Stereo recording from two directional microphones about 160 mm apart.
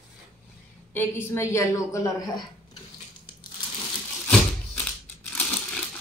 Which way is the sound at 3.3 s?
30° left (ahead or behind).